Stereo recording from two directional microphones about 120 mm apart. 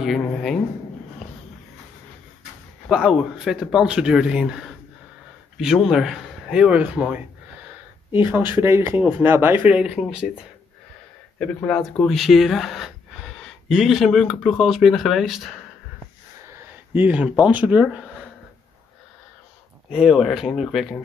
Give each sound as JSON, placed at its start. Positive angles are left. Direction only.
{"t": 0.0, "sound": "speech", "side_deg": 0}
{"t": 2.9, "sound": "speech", "side_deg": -5}
{"t": 11.3, "sound": "speech", "side_deg": 5}
{"t": 16.9, "sound": "speech", "side_deg": -15}
{"t": 19.9, "sound": "speech", "side_deg": 0}